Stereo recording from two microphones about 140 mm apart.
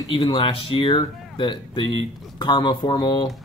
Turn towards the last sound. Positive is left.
turn(degrees=35)  # may be behind; listen again after turning